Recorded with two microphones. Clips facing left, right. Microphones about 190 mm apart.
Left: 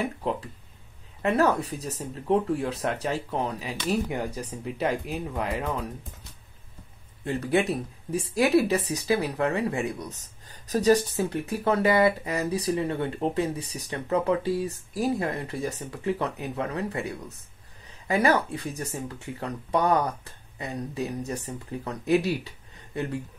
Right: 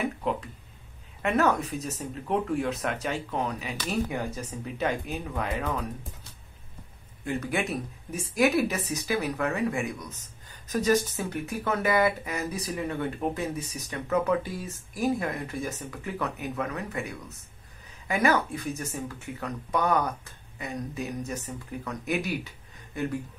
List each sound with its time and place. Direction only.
1.2 s speech: 35° left (ahead or behind)
7.2 s speech: 30° left (ahead or behind)
18.0 s speech: 35° left (ahead or behind)